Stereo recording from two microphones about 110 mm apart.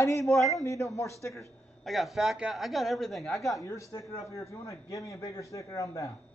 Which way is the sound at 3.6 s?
30° left (ahead or behind).